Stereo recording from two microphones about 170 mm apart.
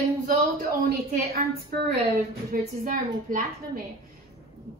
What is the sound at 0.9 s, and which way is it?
Speech, 65° right (ahead or behind).